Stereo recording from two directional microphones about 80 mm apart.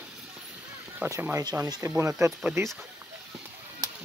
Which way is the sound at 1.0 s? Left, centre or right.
Centre.